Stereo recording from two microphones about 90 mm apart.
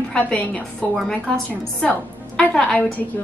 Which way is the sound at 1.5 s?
15° left (ahead or behind).